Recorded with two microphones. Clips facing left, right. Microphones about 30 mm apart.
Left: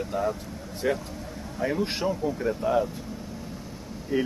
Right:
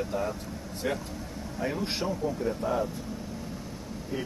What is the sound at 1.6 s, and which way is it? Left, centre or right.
Speech, centre.